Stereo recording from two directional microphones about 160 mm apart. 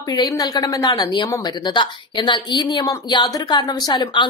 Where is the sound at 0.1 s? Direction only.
25° left (ahead or behind).